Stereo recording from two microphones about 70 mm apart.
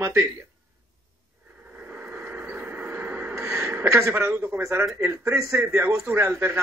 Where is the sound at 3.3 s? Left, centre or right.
Right.